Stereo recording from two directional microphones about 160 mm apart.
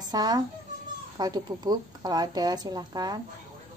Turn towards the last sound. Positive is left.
turn(degrees=-25)  # may be behind; listen again after turning